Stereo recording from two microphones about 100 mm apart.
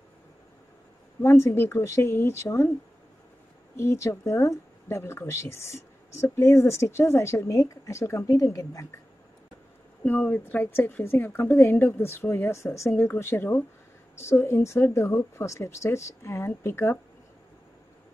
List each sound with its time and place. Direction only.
1.2 s speech: 25° left (ahead or behind)
3.7 s speech: 30° left (ahead or behind)
10.0 s speech: 20° left (ahead or behind)